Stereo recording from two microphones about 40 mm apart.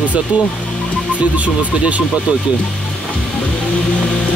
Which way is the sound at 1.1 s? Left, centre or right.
Right.